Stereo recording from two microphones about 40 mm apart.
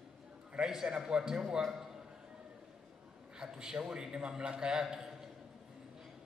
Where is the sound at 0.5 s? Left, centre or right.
Centre.